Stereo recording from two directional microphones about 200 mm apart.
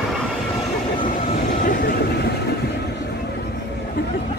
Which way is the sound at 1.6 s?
50° left (ahead or behind).